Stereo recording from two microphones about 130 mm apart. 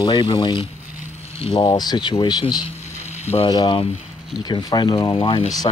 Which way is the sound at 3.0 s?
55° left (ahead or behind).